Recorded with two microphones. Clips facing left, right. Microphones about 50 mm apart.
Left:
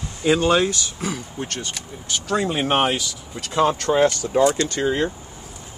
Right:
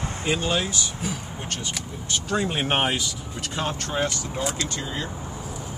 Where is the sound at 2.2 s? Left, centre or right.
Left.